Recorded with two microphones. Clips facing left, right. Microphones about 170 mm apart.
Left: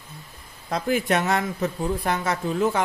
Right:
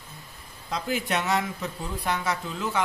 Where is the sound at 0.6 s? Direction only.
50° left (ahead or behind).